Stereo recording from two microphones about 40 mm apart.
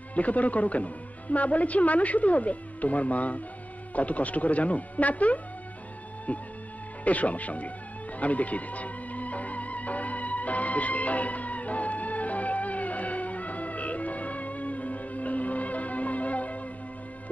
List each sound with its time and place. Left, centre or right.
0.1 s a woman's voice: left
8.2 s music: left